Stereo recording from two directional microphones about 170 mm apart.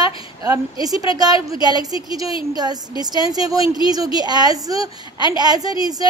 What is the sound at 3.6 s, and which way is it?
Speech, 30° left (ahead or behind).